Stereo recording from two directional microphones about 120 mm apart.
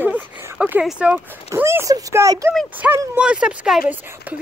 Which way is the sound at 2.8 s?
15° right (ahead or behind).